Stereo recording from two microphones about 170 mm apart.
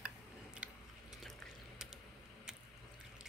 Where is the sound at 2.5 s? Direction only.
5° right (ahead or behind).